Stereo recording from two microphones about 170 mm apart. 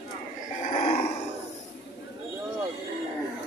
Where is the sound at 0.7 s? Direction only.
40° left (ahead or behind).